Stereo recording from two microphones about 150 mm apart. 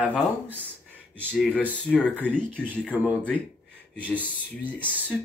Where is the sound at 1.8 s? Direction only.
5° left (ahead or behind).